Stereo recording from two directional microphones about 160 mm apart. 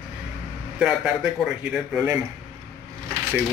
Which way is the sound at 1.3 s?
5° right (ahead or behind).